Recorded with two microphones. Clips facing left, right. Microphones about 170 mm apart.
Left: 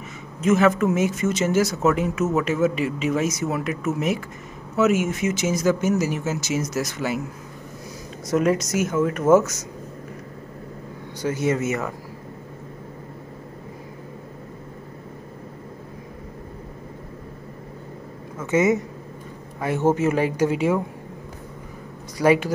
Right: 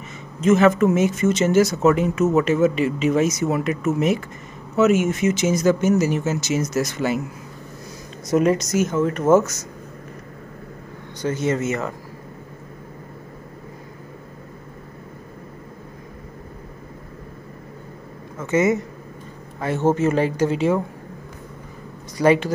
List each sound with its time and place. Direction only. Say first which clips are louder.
0.4 s speech: right 3 dB; 5° left (ahead or behind)
8.4 s speech: right 2 dB; 5° left (ahead or behind)
11.1 s speech: right 1 dB; 10° left (ahead or behind)
18.4 s speech: right 1 dB; 15° left (ahead or behind)
22.2 s speech: right 1 dB; 10° left (ahead or behind)